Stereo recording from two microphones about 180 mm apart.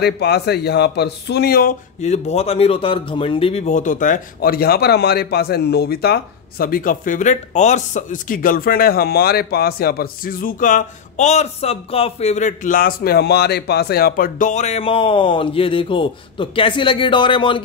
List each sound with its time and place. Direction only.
0.0 s speech: 65° left (ahead or behind); by 17.6 s 25° left (ahead or behind)